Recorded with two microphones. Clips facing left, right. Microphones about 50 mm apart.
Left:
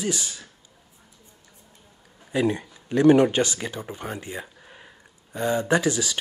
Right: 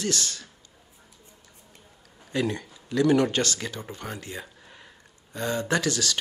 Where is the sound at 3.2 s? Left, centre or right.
Centre.